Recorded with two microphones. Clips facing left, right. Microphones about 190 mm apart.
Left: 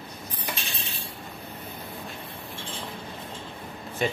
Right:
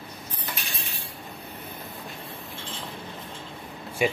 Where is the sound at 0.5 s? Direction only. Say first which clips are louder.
Left 1 dB; 25° left (ahead or behind).